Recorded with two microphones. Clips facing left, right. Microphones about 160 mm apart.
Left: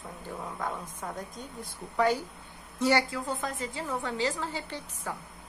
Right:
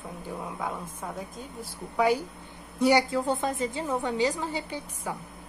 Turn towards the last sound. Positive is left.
turn(degrees=-10)  # may be behind; listen again after turning